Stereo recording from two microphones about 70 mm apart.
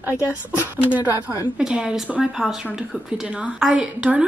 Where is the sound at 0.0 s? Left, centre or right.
Right.